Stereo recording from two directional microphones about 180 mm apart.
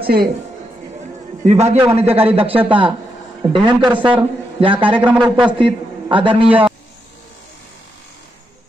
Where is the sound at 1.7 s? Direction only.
35° right (ahead or behind).